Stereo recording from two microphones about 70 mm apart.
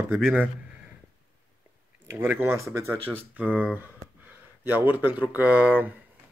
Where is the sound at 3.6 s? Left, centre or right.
Right.